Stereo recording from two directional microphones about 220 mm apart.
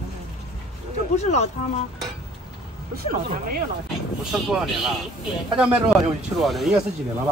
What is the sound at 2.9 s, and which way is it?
Speech, 40° right (ahead or behind).